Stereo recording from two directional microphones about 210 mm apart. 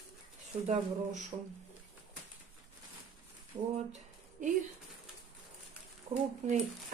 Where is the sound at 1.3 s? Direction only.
20° right (ahead or behind).